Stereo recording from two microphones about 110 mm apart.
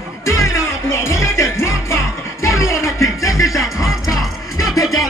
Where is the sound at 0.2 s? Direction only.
25° left (ahead or behind).